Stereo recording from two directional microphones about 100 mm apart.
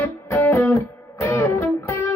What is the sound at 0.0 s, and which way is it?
Music, 25° left (ahead or behind).